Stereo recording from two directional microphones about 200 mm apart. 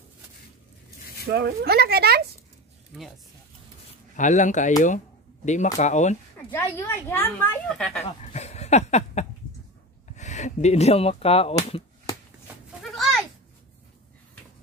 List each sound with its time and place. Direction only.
1.2 s speech: 55° right (ahead or behind)
4.2 s speech: 40° left (ahead or behind)
6.5 s speech: 10° left (ahead or behind)
8.0 s a sound: 35° left (ahead or behind)
10.1 s speech: 35° left (ahead or behind)
12.8 s a sound: centre (ahead or behind)